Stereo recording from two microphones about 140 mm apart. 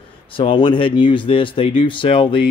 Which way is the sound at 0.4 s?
35° left (ahead or behind).